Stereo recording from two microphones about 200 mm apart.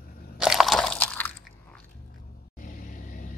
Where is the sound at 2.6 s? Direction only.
40° left (ahead or behind).